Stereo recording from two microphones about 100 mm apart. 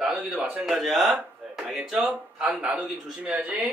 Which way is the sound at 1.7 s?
5° right (ahead or behind).